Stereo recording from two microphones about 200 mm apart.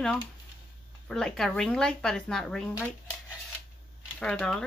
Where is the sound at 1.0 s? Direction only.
5° left (ahead or behind).